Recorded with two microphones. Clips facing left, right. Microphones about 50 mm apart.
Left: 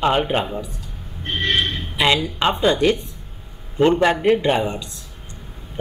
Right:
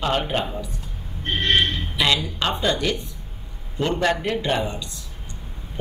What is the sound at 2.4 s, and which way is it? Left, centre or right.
Speech, centre.